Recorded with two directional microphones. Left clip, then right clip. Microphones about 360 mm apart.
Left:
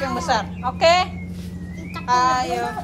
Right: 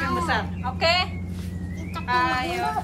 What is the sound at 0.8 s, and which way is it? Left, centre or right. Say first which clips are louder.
Speech: left 6 dB; centre.